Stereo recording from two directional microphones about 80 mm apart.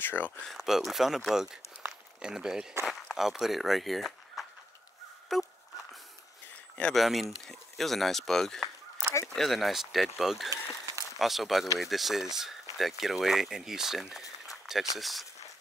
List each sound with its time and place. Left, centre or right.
0.0 s speech: left
0.6 s speech: centre
7.0 s speech: centre
14.5 s a sound: centre
15.0 s speech: centre